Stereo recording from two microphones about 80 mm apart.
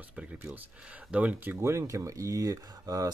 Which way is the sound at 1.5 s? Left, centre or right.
Right.